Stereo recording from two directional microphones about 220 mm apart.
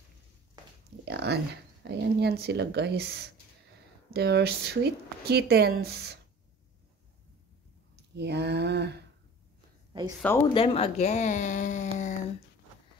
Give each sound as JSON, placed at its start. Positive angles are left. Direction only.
{"t": 1.0, "sound": "speech", "side_deg": -50}
{"t": 7.9, "sound": "speech", "side_deg": -50}
{"t": 9.9, "sound": "speech", "side_deg": -20}
{"t": 10.5, "sound": "speech", "side_deg": 25}